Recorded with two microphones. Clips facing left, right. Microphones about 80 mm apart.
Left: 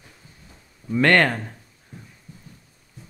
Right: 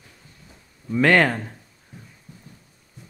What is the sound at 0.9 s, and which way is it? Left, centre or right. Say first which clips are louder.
Speech: even; centre.